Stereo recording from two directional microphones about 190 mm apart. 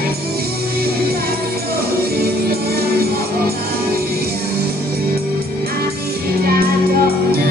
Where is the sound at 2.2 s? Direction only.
55° right (ahead or behind).